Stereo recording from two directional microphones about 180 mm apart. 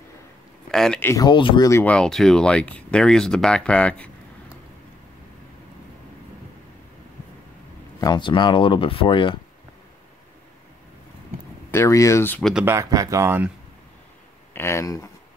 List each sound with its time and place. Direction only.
0.7 s a man's voice: 5° left (ahead or behind)
1.1 s speech: 25° left (ahead or behind)
1.7 s speech: 15° left (ahead or behind)
2.0 s speech: 5° left (ahead or behind)
8.0 s speech: 25° left (ahead or behind)
11.7 s speech: 15° left (ahead or behind)
12.6 s speech: 15° right (ahead or behind)
14.5 s speech: 15° left (ahead or behind)